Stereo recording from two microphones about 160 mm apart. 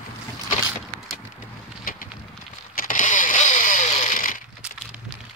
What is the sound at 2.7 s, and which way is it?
Vehicle, 55° left (ahead or behind).